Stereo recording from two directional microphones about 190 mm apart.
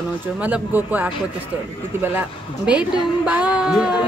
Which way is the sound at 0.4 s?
10° right (ahead or behind).